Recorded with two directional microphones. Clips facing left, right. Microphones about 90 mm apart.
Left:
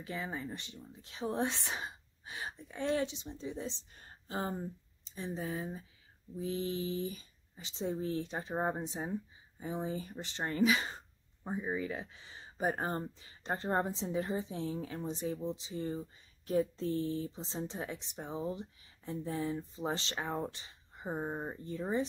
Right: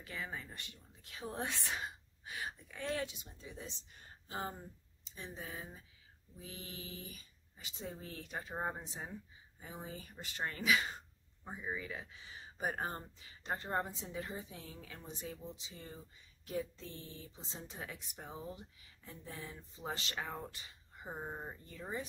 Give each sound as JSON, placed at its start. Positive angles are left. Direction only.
{"t": 0.0, "sound": "speech", "side_deg": 20}